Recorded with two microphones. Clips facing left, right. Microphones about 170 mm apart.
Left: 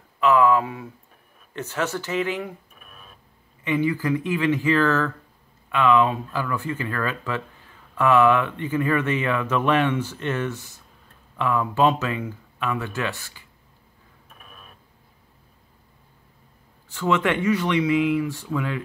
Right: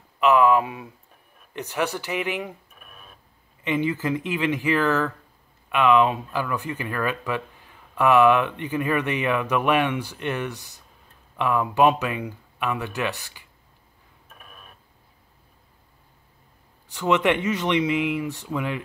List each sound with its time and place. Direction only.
0.2 s speech: 20° right (ahead or behind)
3.6 s speech: 20° right (ahead or behind)
16.9 s speech: 20° right (ahead or behind)